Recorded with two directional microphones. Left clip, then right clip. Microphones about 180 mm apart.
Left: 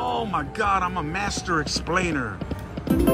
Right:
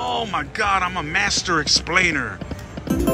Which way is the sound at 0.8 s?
5° left (ahead or behind).